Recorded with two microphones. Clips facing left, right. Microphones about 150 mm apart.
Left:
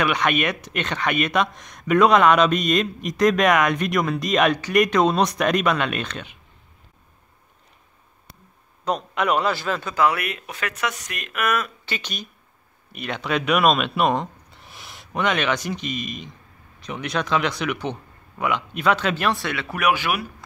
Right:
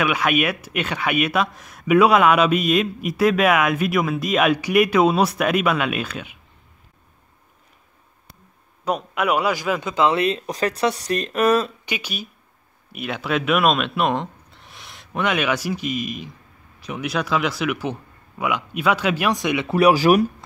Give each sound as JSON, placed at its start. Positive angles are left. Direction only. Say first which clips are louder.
{"t": 0.0, "sound": "speech", "louder": "right 1 dB", "side_deg": -5}
{"t": 8.8, "sound": "speech", "louder": "right 1 dB", "side_deg": -5}
{"t": 11.8, "sound": "speech", "louder": "right 2 dB", "side_deg": -10}
{"t": 19.7, "sound": "speech", "louder": "right 8 dB", "side_deg": -35}